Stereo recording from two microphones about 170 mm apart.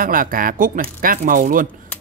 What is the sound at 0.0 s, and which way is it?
Speech, 55° right (ahead or behind).